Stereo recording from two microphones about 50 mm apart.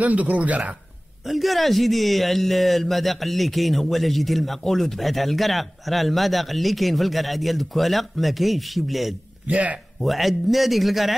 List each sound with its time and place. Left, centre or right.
0.0 s speech: right
1.2 s a man's voice: centre
9.5 s speech: right
9.9 s a man's voice: centre